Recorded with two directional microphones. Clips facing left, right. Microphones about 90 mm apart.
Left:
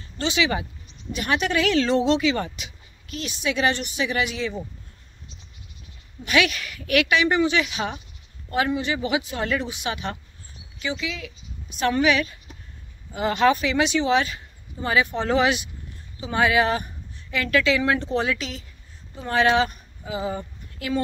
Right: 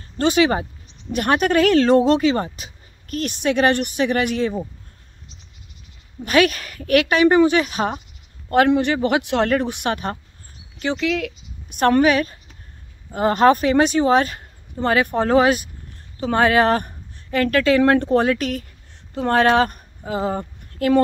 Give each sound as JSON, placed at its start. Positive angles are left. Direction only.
{"t": 0.2, "sound": "speech", "side_deg": -45}
{"t": 6.2, "sound": "speech", "side_deg": -40}
{"t": 8.5, "sound": "speech", "side_deg": -60}
{"t": 16.2, "sound": "speech", "side_deg": -55}